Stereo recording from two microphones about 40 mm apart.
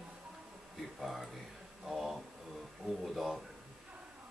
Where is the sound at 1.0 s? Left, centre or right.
Centre.